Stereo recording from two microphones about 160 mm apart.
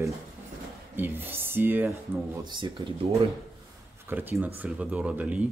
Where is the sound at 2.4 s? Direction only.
30° right (ahead or behind).